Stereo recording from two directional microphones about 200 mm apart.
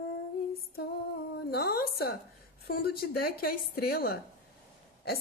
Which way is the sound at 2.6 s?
50° left (ahead or behind).